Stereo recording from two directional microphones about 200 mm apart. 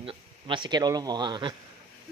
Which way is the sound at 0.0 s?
25° right (ahead or behind).